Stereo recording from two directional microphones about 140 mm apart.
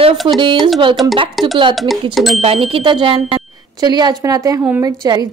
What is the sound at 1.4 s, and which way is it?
Speech, centre (ahead or behind).